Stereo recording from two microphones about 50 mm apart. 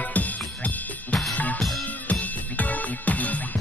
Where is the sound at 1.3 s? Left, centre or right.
Left.